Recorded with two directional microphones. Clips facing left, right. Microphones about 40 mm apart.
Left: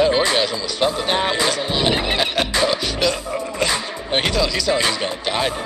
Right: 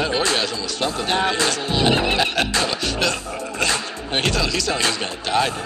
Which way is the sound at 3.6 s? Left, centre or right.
Centre.